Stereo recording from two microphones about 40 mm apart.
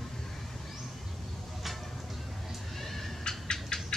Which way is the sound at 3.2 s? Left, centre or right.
Centre.